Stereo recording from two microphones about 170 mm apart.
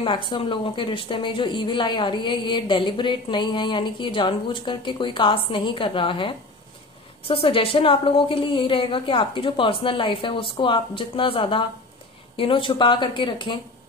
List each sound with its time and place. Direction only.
0.0 s a woman's voice: 30° left (ahead or behind)